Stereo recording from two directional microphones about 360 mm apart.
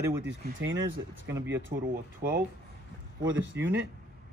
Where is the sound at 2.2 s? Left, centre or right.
Right.